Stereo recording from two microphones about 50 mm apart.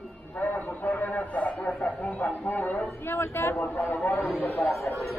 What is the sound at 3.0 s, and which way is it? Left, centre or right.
A man's voice, left.